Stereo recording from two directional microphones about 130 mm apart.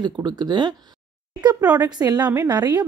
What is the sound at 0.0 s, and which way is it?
Speech, 35° right (ahead or behind).